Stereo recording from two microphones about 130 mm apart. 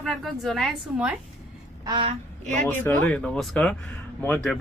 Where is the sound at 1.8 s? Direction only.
35° right (ahead or behind).